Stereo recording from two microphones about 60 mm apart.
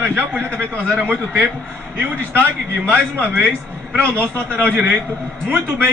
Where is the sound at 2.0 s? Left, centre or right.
Right.